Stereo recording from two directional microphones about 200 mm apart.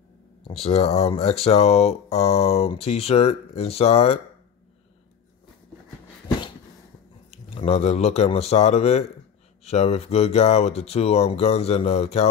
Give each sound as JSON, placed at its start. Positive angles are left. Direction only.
{"t": 0.5, "sound": "speech", "side_deg": 30}
{"t": 7.2, "sound": "speech", "side_deg": 30}